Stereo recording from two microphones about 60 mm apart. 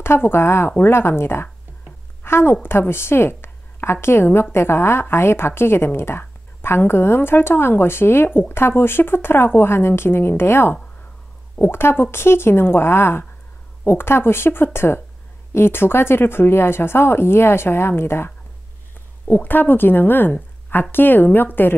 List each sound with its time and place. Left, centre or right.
0.0 s a woman's voice: left